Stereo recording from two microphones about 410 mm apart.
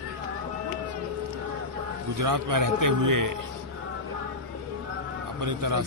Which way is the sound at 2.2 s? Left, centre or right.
Right.